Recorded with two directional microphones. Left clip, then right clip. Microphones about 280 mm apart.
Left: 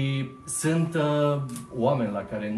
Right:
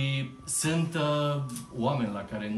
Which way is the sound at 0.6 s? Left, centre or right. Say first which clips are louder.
Left 4 dB; centre.